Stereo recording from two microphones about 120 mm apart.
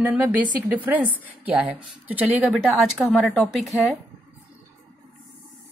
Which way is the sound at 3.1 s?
10° left (ahead or behind).